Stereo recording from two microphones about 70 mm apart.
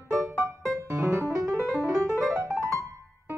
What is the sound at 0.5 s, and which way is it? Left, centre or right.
Music, right.